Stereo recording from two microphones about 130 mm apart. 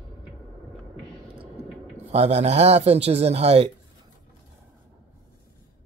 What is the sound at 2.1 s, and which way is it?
A man's voice, 55° right (ahead or behind).